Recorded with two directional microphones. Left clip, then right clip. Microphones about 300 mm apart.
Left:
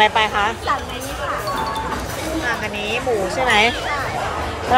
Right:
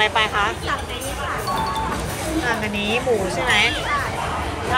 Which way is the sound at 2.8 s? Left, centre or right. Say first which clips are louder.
Even; centre.